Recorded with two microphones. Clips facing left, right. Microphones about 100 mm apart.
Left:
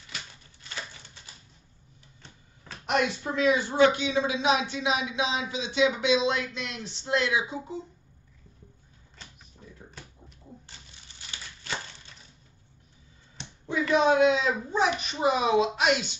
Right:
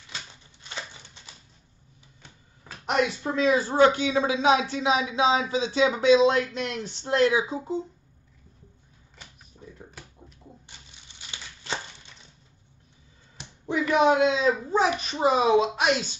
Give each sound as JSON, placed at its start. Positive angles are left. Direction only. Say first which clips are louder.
{"t": 0.1, "sound": "typewriter", "louder": "right 1 dB", "side_deg": -25}
{"t": 2.2, "sound": "a sound", "louder": "even", "side_deg": -10}
{"t": 2.9, "sound": "speech", "louder": "right 2 dB", "side_deg": -30}
{"t": 11.1, "sound": "a sound", "louder": "right 1 dB", "side_deg": -25}
{"t": 13.8, "sound": "speech", "louder": "right 2 dB", "side_deg": -15}
{"t": 14.2, "sound": "speech", "louder": "right 1 dB", "side_deg": -30}